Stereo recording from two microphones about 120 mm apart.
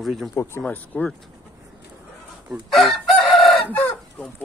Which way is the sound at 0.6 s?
10° left (ahead or behind).